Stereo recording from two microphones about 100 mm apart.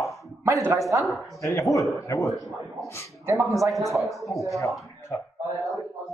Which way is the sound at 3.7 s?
Centre (ahead or behind).